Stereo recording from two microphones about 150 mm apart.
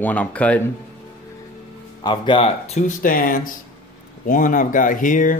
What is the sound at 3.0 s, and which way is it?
Speech, 65° left (ahead or behind).